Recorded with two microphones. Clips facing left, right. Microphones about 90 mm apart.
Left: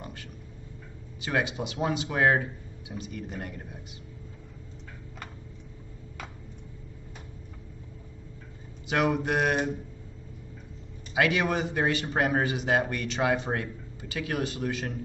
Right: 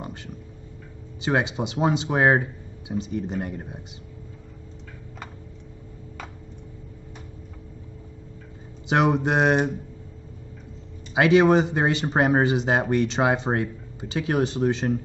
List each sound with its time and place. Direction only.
1.2 s speech: 25° right (ahead or behind)
8.8 s speech: 25° right (ahead or behind)
11.1 s speech: 25° right (ahead or behind)